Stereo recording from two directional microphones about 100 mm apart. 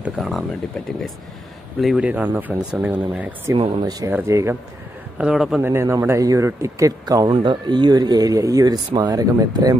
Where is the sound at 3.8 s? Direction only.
35° right (ahead or behind).